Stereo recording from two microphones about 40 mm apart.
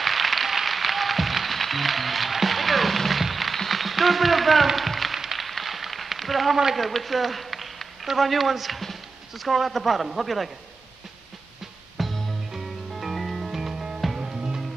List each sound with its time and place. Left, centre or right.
0.0 s music: centre
6.6 s a man's voice: centre
11.6 s music: centre